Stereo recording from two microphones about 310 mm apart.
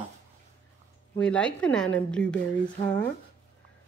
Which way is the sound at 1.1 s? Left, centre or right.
Centre.